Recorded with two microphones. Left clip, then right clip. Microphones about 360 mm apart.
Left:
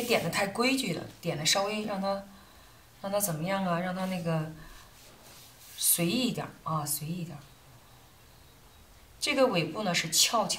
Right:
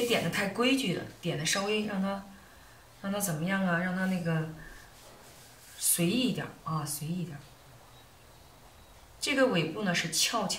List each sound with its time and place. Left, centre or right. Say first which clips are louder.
0.1 s speech: left 2 dB; centre
5.8 s speech: left 1 dB; centre
9.2 s speech: left 1 dB; centre